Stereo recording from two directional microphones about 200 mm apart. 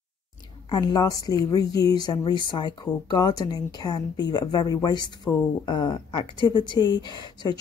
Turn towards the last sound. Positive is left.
turn(degrees=20)  # may be behind; listen again after turning